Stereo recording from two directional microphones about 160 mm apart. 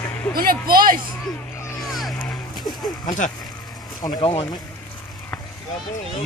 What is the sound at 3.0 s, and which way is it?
Speech, 50° left (ahead or behind).